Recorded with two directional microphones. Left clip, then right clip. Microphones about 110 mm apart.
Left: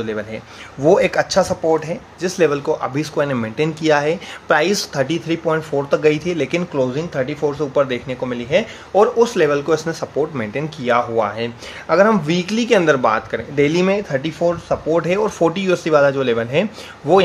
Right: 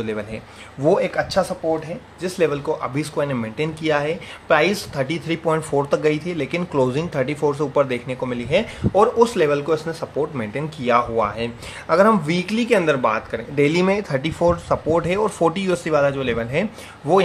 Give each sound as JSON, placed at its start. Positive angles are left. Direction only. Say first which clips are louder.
{"t": 0.0, "sound": "speech", "louder": "left 3 dB", "side_deg": 0}
{"t": 0.8, "sound": "speech", "louder": "left 4 dB", "side_deg": 25}
{"t": 5.4, "sound": "speech", "louder": "right 2 dB", "side_deg": -15}
{"t": 6.0, "sound": "speech", "louder": "left 4 dB", "side_deg": 15}
{"t": 6.8, "sound": "speech", "louder": "right 2 dB", "side_deg": -25}
{"t": 7.8, "sound": "speech", "louder": "left 2 dB", "side_deg": 0}
{"t": 13.7, "sound": "speech", "louder": "left 2 dB", "side_deg": 0}
{"t": 14.4, "sound": "speech", "louder": "right 1 dB", "side_deg": -15}
{"t": 15.0, "sound": "speech", "louder": "left 3 dB", "side_deg": 0}
{"t": 16.1, "sound": "speech", "louder": "left 5 dB", "side_deg": 25}
{"t": 17.1, "sound": "speech", "louder": "left 3 dB", "side_deg": 5}